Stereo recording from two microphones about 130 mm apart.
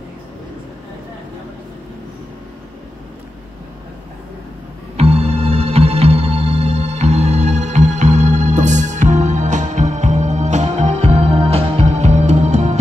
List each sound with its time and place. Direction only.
4.9 s music: 50° right (ahead or behind)